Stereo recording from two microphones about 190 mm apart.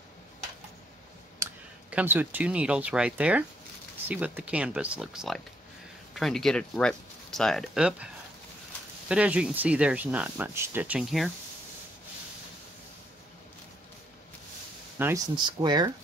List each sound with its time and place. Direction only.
1.4 s speech: 10° right (ahead or behind)
9.1 s speech: 5° right (ahead or behind)
15.0 s speech: 10° right (ahead or behind)
15.3 s speech: 20° right (ahead or behind)